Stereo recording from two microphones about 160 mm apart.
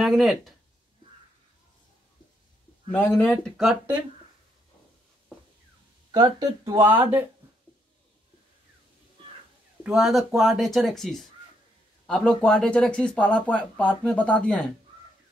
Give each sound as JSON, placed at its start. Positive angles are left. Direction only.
{"t": 0.0, "sound": "speech", "side_deg": 0}
{"t": 2.9, "sound": "speech", "side_deg": 10}
{"t": 6.1, "sound": "speech", "side_deg": -25}
{"t": 6.8, "sound": "speech", "side_deg": -10}
{"t": 9.8, "sound": "speech", "side_deg": 0}